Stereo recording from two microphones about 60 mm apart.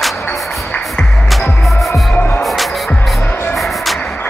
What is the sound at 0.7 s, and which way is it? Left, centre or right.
Music, centre.